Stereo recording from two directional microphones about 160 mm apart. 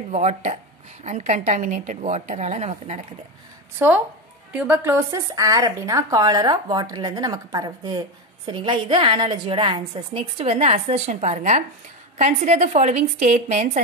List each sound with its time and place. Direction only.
0.1 s a woman's voice: 45° right (ahead or behind)
3.7 s a woman's voice: 10° right (ahead or behind); by 13.7 s 45° right (ahead or behind)